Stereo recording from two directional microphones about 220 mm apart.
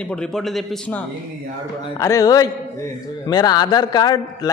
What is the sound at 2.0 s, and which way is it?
A man's voice, 15° left (ahead or behind).